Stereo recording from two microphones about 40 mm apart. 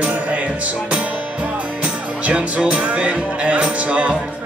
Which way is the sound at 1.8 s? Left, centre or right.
Right.